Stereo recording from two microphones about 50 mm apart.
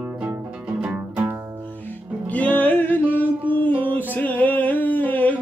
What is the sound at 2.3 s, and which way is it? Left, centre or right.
Music, left.